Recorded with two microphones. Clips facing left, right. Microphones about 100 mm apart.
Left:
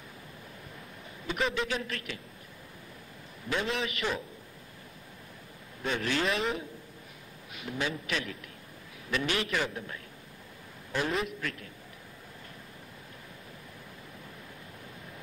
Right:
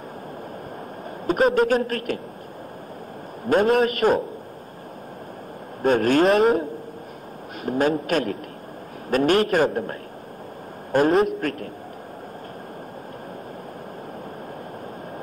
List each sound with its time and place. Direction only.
1.2 s speech: 45° right (ahead or behind)
3.4 s speech: 45° right (ahead or behind)
5.8 s speech: 50° right (ahead or behind)